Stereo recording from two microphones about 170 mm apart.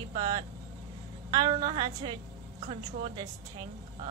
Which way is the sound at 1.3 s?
25° right (ahead or behind).